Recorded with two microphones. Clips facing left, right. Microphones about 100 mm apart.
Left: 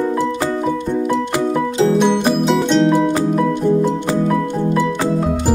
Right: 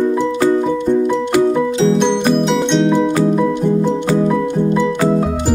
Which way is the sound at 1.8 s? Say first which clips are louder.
Left 2 dB; 5° left (ahead or behind).